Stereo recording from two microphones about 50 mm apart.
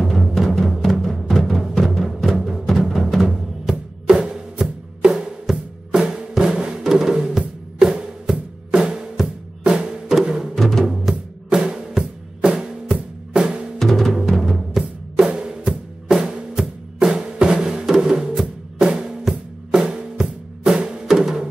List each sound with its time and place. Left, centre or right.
0.1 s timpani: centre
2.0 s music: centre
3.3 s music: centre
8.7 s drum: centre
9.7 s music: centre
10.5 s music: centre
10.9 s music: centre
11.9 s drum kit: centre
13.7 s music: centre